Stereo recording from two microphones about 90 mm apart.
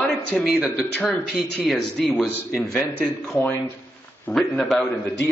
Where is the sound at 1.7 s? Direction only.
5° left (ahead or behind).